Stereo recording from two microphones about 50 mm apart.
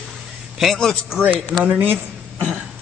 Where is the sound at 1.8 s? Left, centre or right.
Right.